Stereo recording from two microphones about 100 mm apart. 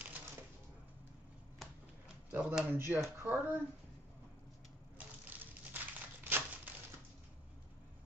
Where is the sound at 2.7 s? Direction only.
25° right (ahead or behind).